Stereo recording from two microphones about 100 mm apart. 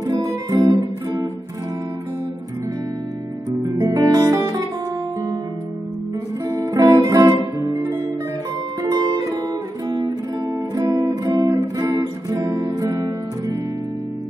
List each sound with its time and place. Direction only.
0.0 s guitar: 40° right (ahead or behind)
3.8 s guitar: 35° right (ahead or behind)
6.5 s guitar: 35° right (ahead or behind)
8.8 s music: 40° right (ahead or behind)
10.7 s guitar: 35° right (ahead or behind)